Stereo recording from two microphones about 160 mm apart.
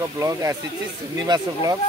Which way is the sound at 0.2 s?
20° right (ahead or behind).